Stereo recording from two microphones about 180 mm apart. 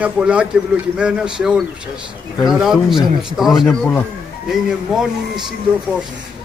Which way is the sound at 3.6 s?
10° left (ahead or behind).